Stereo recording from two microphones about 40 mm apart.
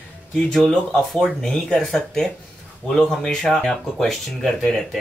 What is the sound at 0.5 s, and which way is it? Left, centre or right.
A man's voice, centre.